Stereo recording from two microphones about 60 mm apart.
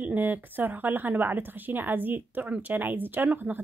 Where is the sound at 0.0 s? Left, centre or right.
Right.